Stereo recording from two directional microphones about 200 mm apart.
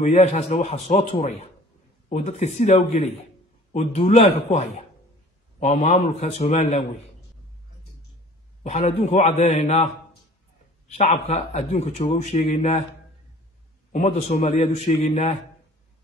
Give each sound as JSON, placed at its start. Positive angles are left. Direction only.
{"t": 0.0, "sound": "a man's voice", "side_deg": 35}
{"t": 5.6, "sound": "a man's voice", "side_deg": 35}
{"t": 8.6, "sound": "a man's voice", "side_deg": 35}
{"t": 10.9, "sound": "a man's voice", "side_deg": 35}
{"t": 13.9, "sound": "a man's voice", "side_deg": 35}